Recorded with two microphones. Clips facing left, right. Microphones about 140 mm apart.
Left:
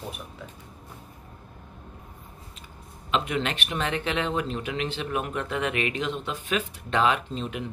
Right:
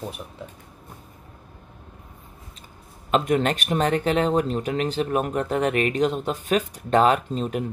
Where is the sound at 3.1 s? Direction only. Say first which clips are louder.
Right 6 dB; 45° right (ahead or behind).